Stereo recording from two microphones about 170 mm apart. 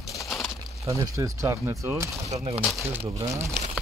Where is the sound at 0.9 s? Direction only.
20° right (ahead or behind).